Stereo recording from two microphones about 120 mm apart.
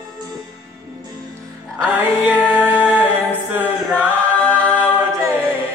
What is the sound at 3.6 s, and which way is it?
A capella, 10° left (ahead or behind).